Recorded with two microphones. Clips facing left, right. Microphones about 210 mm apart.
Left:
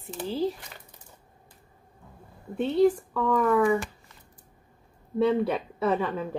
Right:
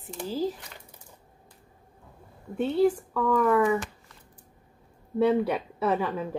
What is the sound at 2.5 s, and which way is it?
Speech, 5° right (ahead or behind).